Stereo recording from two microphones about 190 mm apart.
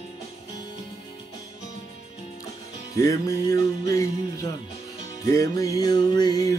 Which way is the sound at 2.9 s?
15° left (ahead or behind).